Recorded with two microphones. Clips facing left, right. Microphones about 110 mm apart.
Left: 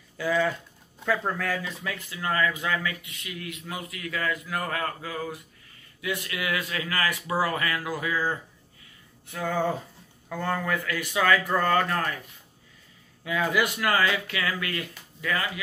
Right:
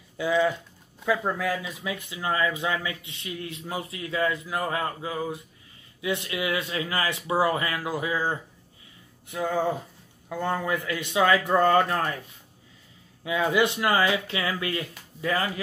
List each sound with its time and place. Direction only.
0.2 s speech: 15° right (ahead or behind)
13.2 s speech: 25° right (ahead or behind)